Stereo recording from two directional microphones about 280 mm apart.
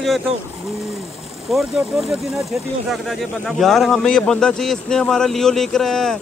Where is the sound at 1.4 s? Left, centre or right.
Centre.